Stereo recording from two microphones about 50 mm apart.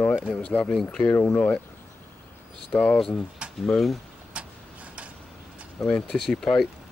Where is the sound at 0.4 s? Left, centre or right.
Left.